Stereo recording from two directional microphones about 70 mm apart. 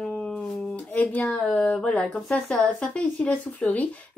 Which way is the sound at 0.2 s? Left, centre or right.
Centre.